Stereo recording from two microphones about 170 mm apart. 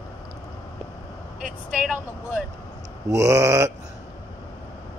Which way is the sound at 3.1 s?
20° right (ahead or behind).